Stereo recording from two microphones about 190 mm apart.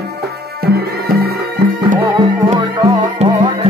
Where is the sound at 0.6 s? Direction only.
55° right (ahead or behind).